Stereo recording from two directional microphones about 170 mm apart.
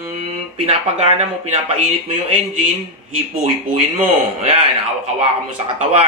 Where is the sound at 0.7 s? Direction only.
40° right (ahead or behind).